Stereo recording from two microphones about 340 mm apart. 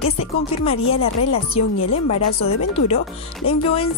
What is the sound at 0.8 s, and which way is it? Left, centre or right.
Speech, left.